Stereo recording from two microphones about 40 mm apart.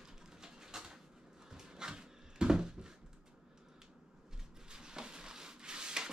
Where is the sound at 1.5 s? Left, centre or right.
Centre.